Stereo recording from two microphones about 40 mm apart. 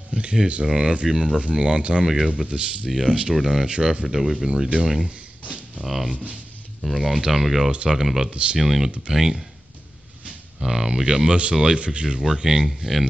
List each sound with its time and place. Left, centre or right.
0.1 s a sound: right
0.7 s speech: centre
2.0 s speech: centre
2.4 s speech: right
3.1 s speech: centre
3.6 s speech: right
4.5 s speech: right
5.9 s speech: centre
8.3 s speech: right
8.5 s speech: centre
10.6 s speech: centre
12.3 s speech: centre